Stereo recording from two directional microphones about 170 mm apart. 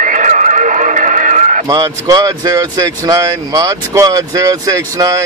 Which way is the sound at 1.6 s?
20° right (ahead or behind).